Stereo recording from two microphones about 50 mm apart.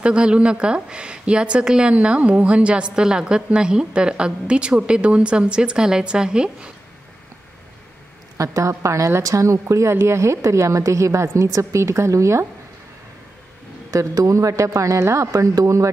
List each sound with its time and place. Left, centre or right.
0.0 s speech: right
8.4 s a woman's voice: right
13.9 s a woman's voice: right